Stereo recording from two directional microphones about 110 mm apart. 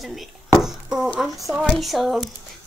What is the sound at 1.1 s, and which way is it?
Speech, centre (ahead or behind).